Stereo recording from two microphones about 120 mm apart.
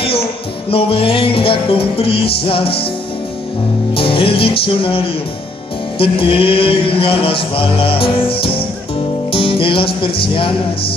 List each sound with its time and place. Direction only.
0.0 s music: 50° left (ahead or behind)
3.9 s music: 50° left (ahead or behind)